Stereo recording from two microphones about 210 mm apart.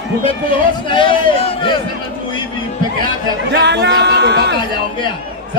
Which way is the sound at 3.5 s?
55° right (ahead or behind).